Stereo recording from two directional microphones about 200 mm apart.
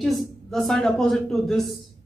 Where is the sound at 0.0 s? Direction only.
Centre (ahead or behind).